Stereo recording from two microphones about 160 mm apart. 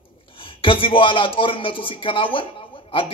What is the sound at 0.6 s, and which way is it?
Speech, 35° left (ahead or behind).